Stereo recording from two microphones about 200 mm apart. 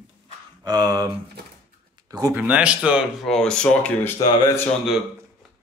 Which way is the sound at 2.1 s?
15° right (ahead or behind).